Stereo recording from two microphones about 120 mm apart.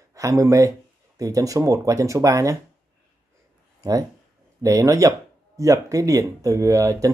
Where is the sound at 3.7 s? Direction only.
30° right (ahead or behind).